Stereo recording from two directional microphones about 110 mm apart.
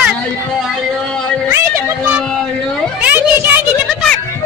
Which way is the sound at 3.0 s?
15° right (ahead or behind).